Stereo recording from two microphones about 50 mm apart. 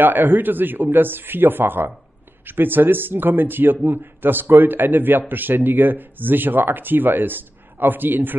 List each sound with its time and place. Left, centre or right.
0.0 s speech: right